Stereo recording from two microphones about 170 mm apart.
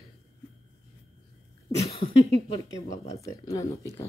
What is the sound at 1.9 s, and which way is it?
Cough, 40° left (ahead or behind).